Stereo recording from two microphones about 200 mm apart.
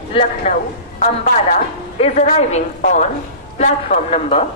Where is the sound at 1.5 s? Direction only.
35° left (ahead or behind).